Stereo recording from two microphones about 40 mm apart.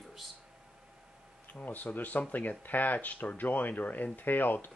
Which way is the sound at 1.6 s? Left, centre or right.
Left.